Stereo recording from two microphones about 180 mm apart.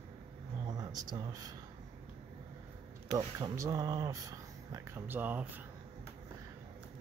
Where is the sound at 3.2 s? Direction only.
20° right (ahead or behind).